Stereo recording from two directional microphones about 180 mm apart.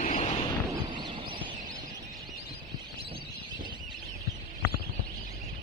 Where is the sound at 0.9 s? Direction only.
25° right (ahead or behind).